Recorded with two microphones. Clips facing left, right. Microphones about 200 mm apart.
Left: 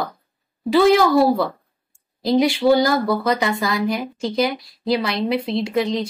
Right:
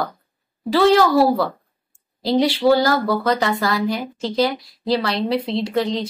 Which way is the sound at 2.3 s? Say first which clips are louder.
Even; 15° left (ahead or behind).